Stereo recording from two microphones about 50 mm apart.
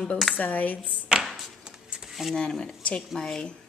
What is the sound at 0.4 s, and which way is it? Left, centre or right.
Speech, left.